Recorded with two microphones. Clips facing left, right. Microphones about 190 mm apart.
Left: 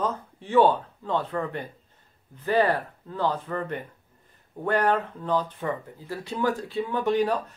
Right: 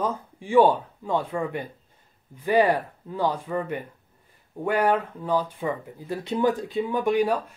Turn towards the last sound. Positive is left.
turn(degrees=-10)  # may be behind; listen again after turning